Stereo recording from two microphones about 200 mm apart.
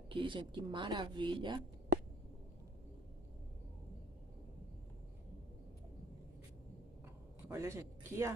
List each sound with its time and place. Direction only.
0.1 s a woman's voice: 25° right (ahead or behind)
7.4 s speech: 15° right (ahead or behind)